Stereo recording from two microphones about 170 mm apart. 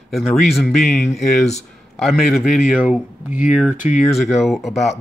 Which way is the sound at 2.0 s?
Centre (ahead or behind).